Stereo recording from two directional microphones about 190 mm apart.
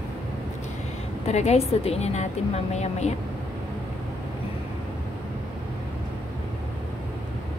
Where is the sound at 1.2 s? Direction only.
35° left (ahead or behind).